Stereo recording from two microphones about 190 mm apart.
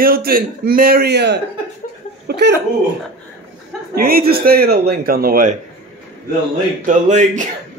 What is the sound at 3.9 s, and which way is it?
Speech, 50° right (ahead or behind).